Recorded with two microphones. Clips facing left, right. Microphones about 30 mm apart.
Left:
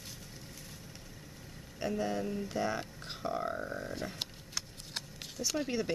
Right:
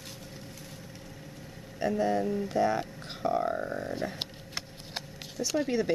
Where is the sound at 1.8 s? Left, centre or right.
Centre.